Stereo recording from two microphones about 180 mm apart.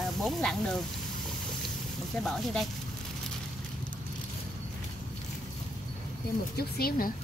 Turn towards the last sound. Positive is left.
turn(degrees=55)  # may be behind; listen again after turning